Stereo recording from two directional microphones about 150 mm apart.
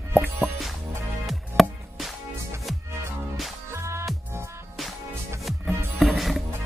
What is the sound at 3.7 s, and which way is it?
Music, 20° right (ahead or behind).